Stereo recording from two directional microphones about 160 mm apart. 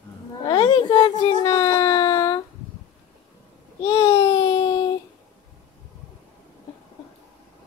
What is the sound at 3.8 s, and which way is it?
Babbling, 20° left (ahead or behind).